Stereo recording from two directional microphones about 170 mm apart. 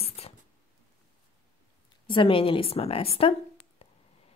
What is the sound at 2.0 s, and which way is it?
Speech, 30° left (ahead or behind).